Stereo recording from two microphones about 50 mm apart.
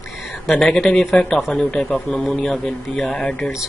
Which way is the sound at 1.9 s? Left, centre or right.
Centre.